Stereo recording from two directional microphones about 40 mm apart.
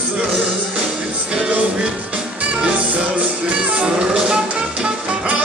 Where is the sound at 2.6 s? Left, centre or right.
Right.